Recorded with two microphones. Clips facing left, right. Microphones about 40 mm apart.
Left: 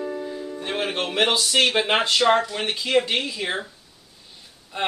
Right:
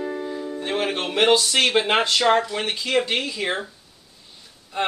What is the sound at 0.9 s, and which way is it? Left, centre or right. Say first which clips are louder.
Speech: right 4 dB; centre.